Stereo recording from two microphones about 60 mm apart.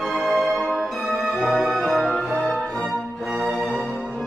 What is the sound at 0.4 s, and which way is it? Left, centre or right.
Music, centre.